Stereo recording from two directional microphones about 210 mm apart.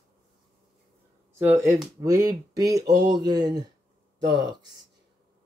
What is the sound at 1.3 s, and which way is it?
Speech, 10° right (ahead or behind).